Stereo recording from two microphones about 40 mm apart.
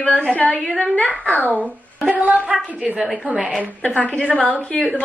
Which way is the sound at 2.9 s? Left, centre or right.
Centre.